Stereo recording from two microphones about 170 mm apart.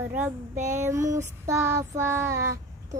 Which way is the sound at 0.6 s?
45° right (ahead or behind).